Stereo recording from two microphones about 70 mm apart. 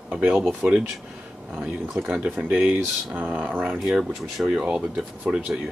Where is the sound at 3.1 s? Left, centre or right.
Right.